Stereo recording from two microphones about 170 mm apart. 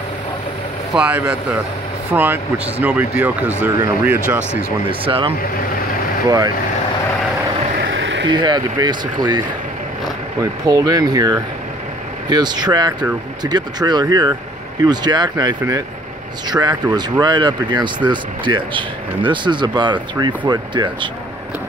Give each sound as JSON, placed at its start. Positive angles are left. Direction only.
{"t": 0.9, "sound": "speech", "side_deg": -5}
{"t": 5.0, "sound": "speech", "side_deg": -30}
{"t": 6.2, "sound": "speech", "side_deg": -20}
{"t": 7.7, "sound": "a sound", "side_deg": -80}
{"t": 8.3, "sound": "speech", "side_deg": -25}
{"t": 10.7, "sound": "speech", "side_deg": -20}